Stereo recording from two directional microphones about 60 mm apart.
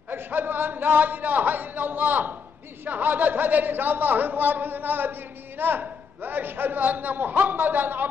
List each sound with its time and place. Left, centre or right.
0.1 s a man's voice: right